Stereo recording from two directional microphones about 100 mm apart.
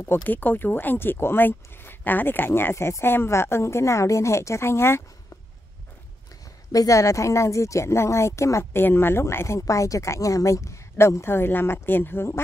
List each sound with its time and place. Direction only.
0.0 s speech: 20° left (ahead or behind)
6.7 s speech: 35° left (ahead or behind)